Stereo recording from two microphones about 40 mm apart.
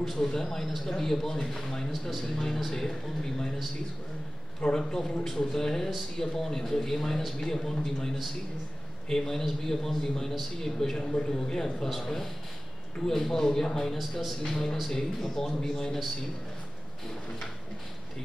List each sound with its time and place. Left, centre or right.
0.2 s speech: centre
2.2 s speech: centre
4.7 s speech: centre